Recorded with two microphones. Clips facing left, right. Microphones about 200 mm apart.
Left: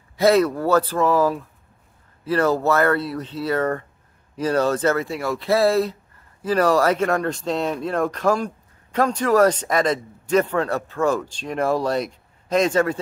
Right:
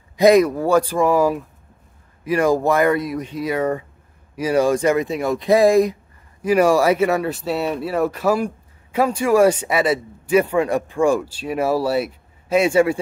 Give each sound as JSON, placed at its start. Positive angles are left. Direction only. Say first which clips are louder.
{"t": 0.2, "sound": "speech", "louder": "right 4 dB", "side_deg": -15}